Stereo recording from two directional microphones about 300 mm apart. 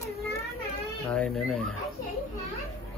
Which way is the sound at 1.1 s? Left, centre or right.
Centre.